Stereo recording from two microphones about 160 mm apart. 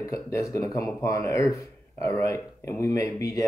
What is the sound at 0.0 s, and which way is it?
Speech, 20° left (ahead or behind).